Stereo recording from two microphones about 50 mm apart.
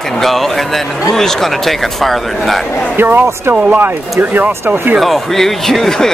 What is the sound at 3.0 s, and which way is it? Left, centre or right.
Speech, right.